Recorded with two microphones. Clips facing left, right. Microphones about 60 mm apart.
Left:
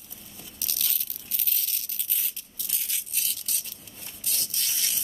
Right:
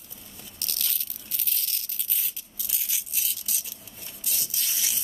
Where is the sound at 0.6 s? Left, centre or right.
Centre.